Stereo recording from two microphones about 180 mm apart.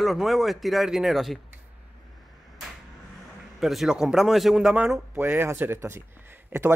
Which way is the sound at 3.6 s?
Centre (ahead or behind).